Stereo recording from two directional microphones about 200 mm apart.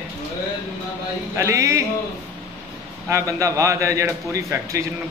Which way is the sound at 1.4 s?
15° right (ahead or behind).